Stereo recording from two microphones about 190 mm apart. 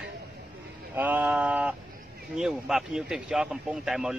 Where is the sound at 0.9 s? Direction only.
10° right (ahead or behind).